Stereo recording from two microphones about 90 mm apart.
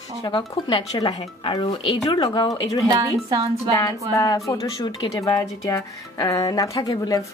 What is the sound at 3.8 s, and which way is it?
Speech, 40° left (ahead or behind).